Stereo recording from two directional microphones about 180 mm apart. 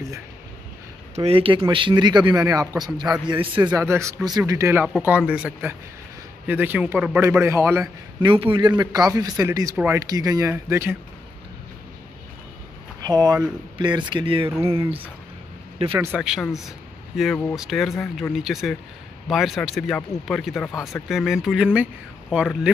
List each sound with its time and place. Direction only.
1.1 s speech: 35° right (ahead or behind); by 7.8 s 15° right (ahead or behind)
8.2 s speech: 25° right (ahead or behind); by 10.0 s 10° right (ahead or behind)
10.0 s speech: 20° right (ahead or behind)
13.0 s speech: 20° right (ahead or behind)
16.1 s speech: centre (ahead or behind)